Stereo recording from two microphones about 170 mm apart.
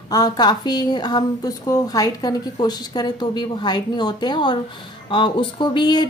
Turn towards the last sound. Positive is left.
turn(degrees=25)  # may be behind; listen again after turning